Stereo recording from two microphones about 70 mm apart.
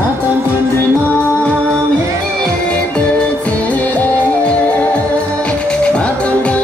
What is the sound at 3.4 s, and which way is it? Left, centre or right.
Music, left.